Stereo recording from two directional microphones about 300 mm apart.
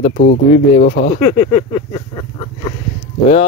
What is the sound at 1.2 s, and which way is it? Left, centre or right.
Speech, centre.